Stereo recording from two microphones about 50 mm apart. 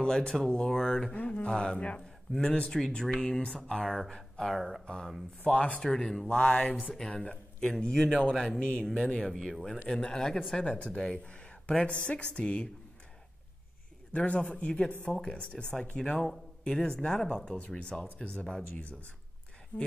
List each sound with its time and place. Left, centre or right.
0.0 s a man's voice: centre
1.1 s a man's voice: left; by 4.1 s centre
4.5 s speech: centre
5.5 s speech: left
5.8 s speech: centre; by 7.0 s left
7.0 s a man's voice: centre
14.1 s a man's voice: left
18.0 s speech: left
18.3 s speech: left